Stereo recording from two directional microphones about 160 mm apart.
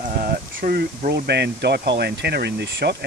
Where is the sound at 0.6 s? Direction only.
60° right (ahead or behind).